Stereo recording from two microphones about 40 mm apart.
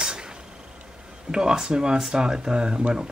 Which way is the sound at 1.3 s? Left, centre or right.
Centre.